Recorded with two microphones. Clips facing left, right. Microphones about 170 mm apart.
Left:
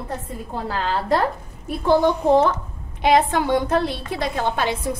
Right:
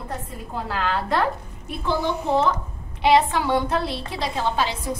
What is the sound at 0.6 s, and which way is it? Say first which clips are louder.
Speech: left 3 dB; 35° left (ahead or behind).